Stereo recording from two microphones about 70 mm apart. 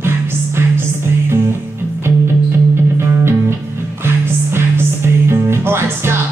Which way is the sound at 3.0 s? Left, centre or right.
Right.